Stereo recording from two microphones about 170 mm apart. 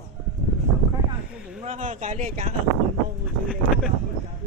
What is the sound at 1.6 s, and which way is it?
Speech, 45° right (ahead or behind).